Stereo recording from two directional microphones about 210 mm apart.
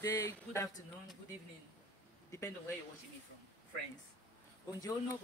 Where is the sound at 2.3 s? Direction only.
15° left (ahead or behind).